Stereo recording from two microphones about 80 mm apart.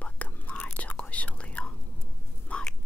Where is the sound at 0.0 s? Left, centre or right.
Centre.